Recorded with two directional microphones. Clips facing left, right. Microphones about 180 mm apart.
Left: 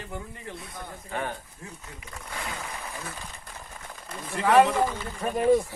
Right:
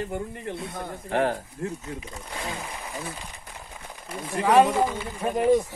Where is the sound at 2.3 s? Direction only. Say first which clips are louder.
Right 2 dB; 20° right (ahead or behind).